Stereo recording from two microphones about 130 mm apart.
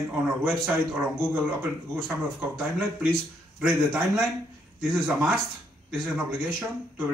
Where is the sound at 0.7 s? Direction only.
20° right (ahead or behind).